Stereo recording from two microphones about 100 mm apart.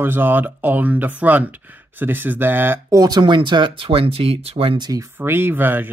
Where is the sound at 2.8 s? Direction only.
40° right (ahead or behind); by 4.8 s 75° right (ahead or behind).